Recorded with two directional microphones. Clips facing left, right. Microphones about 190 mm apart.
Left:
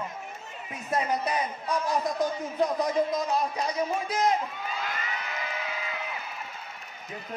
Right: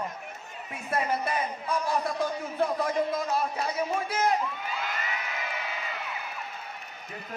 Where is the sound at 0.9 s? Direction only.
20° left (ahead or behind).